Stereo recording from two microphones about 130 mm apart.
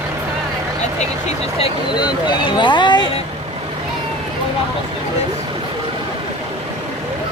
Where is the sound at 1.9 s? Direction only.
35° left (ahead or behind).